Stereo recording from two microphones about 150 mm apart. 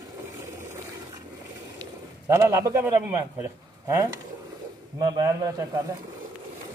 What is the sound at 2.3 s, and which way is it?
Speech, 20° right (ahead or behind).